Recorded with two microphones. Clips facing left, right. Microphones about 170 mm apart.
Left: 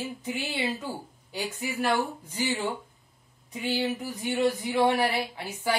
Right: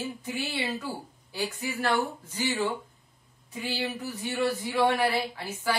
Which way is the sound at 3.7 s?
20° left (ahead or behind).